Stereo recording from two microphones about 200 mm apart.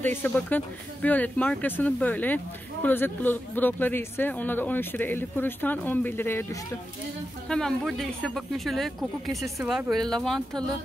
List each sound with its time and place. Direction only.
0.0 s speech: 10° left (ahead or behind)